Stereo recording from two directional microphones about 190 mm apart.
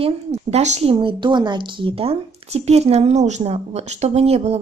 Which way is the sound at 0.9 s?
25° right (ahead or behind).